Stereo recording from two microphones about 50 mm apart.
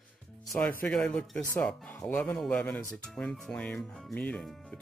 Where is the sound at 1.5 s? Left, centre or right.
Left.